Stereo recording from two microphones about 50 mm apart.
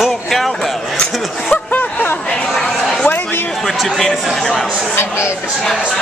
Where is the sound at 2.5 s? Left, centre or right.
Centre.